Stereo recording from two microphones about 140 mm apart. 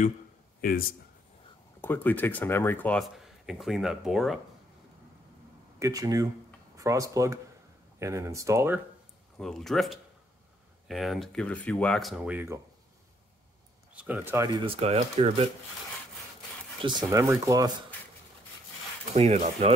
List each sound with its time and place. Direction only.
0.6 s speech: 90° left
1.8 s speech: 15° left (ahead or behind)
3.0 s speech: centre (ahead or behind)
5.8 s speech: 25° right (ahead or behind)
9.4 s speech: 5° left (ahead or behind)
12.2 s speech: 10° right (ahead or behind)
13.9 s speech: 10° right (ahead or behind)
14.6 s speech: 45° right (ahead or behind)
17.1 s speech: 25° right (ahead or behind)
19.1 s speech: 50° right (ahead or behind)